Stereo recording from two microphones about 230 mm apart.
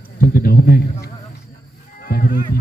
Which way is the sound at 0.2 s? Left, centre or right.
Left.